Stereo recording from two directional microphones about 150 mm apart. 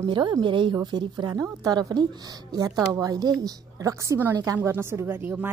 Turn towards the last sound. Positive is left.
turn(degrees=-15)  # may be behind; listen again after turning